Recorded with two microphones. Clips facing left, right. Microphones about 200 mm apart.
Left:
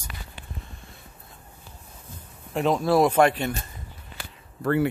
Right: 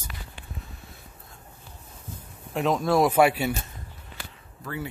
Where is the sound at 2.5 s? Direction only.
Centre (ahead or behind).